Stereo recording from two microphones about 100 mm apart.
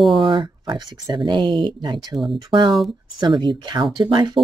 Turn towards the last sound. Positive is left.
turn(degrees=-50)  # may be behind; listen again after turning